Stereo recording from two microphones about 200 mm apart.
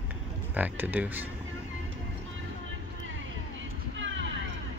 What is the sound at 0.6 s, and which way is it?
Speech, 10° right (ahead or behind).